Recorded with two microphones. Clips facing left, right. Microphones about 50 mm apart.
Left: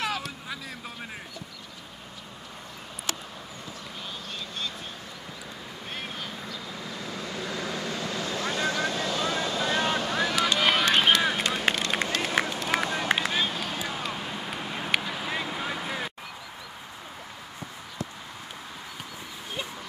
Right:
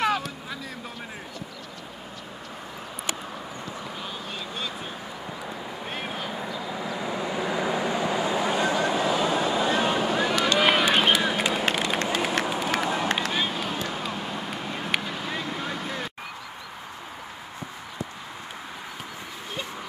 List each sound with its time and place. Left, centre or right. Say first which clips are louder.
0.0 s vehicle: right 6 dB; centre
5.9 s vehicle: right 3 dB; centre
10.6 s run: right 2 dB; centre
11.7 s vehicle: right 3 dB; centre
12.1 s run: right 2 dB; centre
13.9 s vehicle: right 2 dB; centre